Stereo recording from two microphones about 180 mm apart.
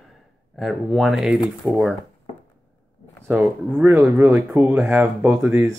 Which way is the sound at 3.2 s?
10° right (ahead or behind).